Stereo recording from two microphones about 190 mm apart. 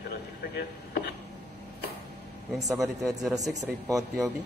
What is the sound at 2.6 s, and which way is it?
Speech, 15° right (ahead or behind).